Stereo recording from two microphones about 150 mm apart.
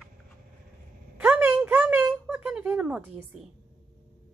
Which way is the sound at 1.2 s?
10° right (ahead or behind).